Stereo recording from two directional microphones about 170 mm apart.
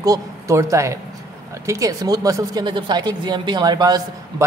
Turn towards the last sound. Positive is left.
turn(degrees=-25)  # may be behind; listen again after turning